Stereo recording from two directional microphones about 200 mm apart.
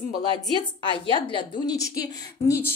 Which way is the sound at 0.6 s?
25° left (ahead or behind).